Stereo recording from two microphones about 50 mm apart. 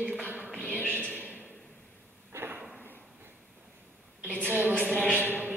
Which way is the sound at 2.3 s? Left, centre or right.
Right.